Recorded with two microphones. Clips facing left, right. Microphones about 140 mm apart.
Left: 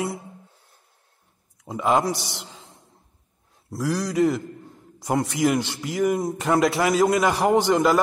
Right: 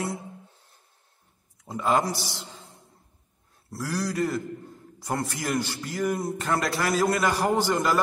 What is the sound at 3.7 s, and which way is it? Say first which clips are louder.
A man's voice: left 5 dB; 10° left (ahead or behind).